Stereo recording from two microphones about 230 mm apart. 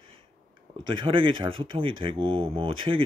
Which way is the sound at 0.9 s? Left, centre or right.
Right.